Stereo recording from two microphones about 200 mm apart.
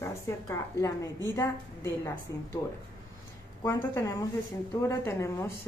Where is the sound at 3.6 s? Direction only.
15° left (ahead or behind).